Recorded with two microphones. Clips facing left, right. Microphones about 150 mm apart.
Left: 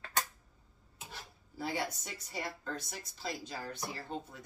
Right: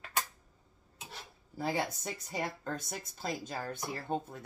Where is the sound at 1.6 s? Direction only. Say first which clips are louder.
Right 3 dB; 50° right (ahead or behind).